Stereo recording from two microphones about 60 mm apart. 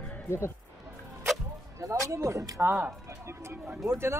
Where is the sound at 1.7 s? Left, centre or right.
Right.